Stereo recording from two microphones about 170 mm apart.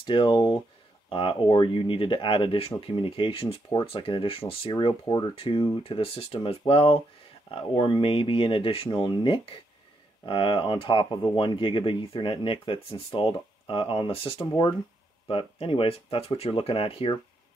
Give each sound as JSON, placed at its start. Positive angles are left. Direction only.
{"t": 0.0, "sound": "speech", "side_deg": 30}